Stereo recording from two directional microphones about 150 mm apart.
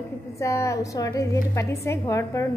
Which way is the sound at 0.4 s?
20° left (ahead or behind).